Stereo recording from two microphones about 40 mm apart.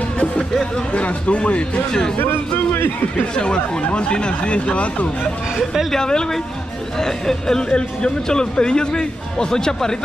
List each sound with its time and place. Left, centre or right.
0.9 s speech: left
1.9 s speech: centre
3.3 s a man's voice: left
5.9 s a man's voice: centre